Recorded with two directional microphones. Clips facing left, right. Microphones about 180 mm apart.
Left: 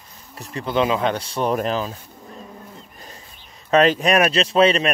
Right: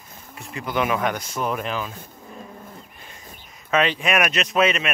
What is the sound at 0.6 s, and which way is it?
Speech, 25° left (ahead or behind).